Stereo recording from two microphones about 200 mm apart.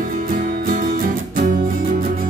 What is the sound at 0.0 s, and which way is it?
Music, 45° right (ahead or behind).